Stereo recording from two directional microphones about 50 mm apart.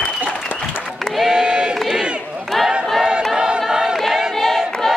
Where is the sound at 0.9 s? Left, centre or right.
Centre.